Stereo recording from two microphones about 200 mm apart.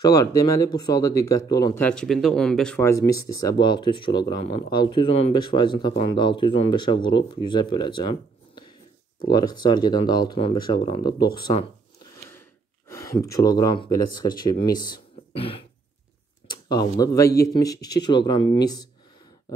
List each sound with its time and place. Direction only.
0.0 s speech: 15° left (ahead or behind)
1.9 s speech: 5° left (ahead or behind); by 11.1 s 20° left (ahead or behind)
11.3 s a sound: 25° left (ahead or behind)
12.8 s speech: 15° left (ahead or behind)
17.0 s speech: 15° left (ahead or behind)